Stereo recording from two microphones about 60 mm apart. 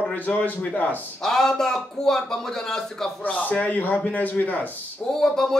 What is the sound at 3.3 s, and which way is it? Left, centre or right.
Speech, left.